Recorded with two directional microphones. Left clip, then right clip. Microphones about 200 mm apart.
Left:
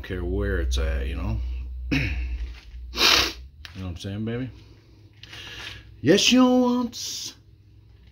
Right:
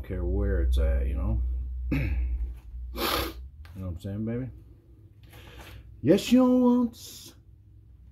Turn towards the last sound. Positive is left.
turn(degrees=10)  # may be behind; listen again after turning